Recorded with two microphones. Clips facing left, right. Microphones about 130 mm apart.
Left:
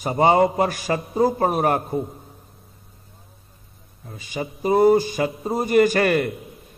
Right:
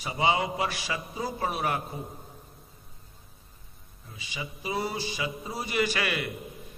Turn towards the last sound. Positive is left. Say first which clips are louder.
# left 11 dB
turn(degrees=45)  # may be behind; listen again after turning